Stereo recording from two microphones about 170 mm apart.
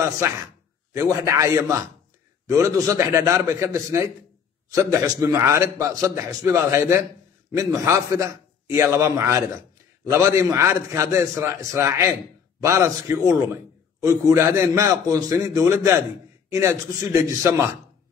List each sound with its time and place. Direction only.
0.2 s a man's voice: 15° right (ahead or behind)